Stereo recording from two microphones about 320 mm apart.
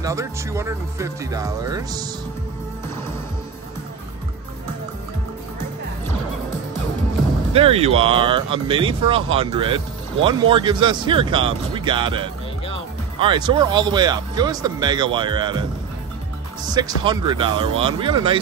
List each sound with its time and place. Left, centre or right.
0.0 s speech: centre
7.5 s speech: centre
16.6 s speech: centre